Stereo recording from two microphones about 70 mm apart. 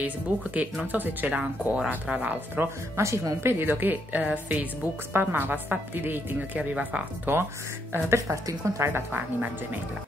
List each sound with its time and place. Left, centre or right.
0.0 s a woman's voice: centre
3.0 s a woman's voice: right
7.9 s a woman's voice: right
8.8 s a woman's voice: right